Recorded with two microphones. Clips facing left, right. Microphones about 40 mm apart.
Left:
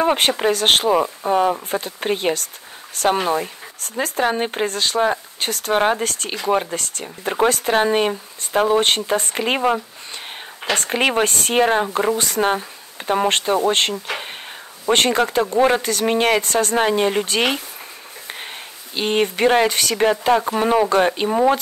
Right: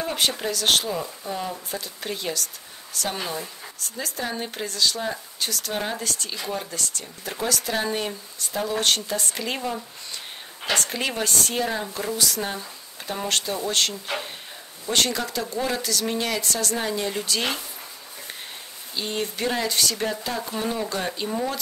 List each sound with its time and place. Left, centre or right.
0.0 s speech: left
18.9 s speech: left